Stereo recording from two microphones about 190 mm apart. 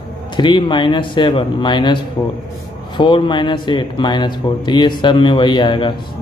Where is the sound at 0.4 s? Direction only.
25° left (ahead or behind).